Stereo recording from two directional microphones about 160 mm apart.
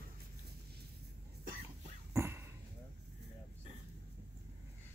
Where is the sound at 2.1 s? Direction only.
15° right (ahead or behind).